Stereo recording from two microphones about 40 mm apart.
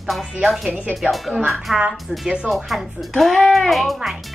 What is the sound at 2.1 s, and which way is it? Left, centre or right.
Speech, right.